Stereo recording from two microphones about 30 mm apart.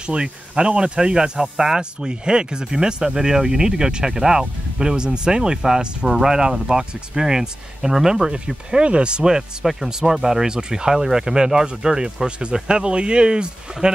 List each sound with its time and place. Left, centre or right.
0.0 s speech: right
1.4 s speech: centre
1.8 s speech: right
8.6 s speech: right
9.8 s speech: centre
12.3 s speech: right